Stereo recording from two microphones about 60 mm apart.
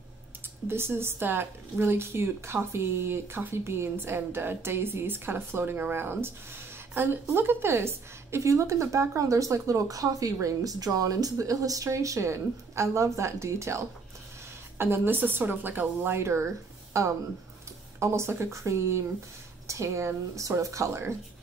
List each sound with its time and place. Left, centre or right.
0.7 s speech: right
10.4 s speech: right
14.8 s speech: right
17.0 s speech: right